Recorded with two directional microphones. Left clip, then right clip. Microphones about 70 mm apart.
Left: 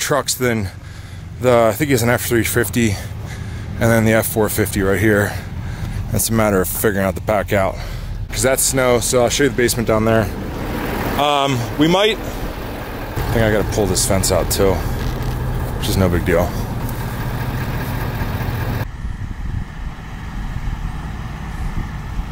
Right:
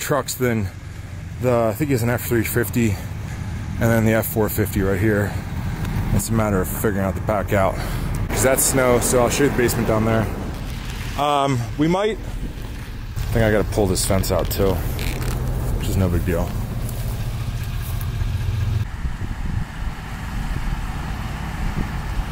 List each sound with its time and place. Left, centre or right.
0.0 s speech: centre
1.4 s speech: centre
11.1 s speech: centre
11.8 s speech: centre
13.6 s speech: centre
15.8 s speech: left